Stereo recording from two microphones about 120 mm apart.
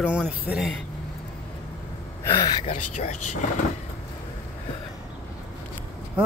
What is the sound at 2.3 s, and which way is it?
Speech, 35° left (ahead or behind).